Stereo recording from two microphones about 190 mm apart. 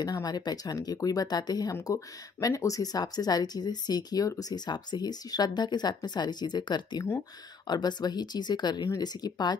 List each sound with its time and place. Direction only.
0.0 s speech: 20° left (ahead or behind)